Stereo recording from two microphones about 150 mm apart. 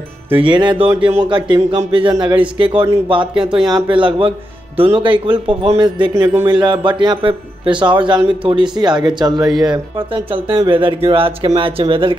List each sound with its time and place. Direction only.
0.4 s speech: 30° right (ahead or behind)